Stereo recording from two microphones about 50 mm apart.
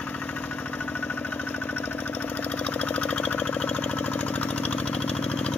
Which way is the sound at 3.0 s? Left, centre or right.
Left.